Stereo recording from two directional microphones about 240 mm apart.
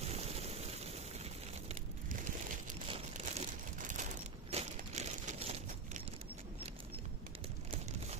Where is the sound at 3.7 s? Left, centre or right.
Right.